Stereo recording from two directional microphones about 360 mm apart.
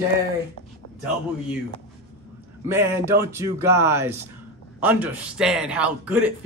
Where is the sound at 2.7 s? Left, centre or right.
Centre.